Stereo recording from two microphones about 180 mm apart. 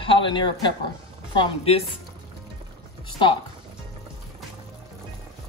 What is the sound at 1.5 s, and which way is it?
Speech, 30° left (ahead or behind).